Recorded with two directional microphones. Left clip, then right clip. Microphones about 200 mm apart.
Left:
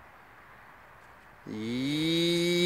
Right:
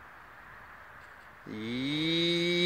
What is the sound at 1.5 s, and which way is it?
Mantra, 15° left (ahead or behind).